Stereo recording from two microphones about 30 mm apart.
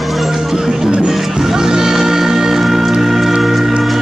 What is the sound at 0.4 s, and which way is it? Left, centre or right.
Music, centre.